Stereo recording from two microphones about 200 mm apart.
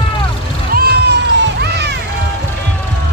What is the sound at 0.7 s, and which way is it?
Cat, 50° right (ahead or behind).